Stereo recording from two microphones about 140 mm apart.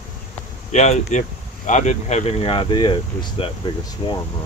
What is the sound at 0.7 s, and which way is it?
Speech, 55° left (ahead or behind).